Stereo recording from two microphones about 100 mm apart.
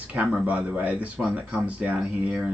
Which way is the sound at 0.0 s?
15° right (ahead or behind).